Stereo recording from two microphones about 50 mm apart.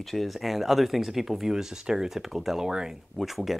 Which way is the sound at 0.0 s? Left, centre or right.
Centre.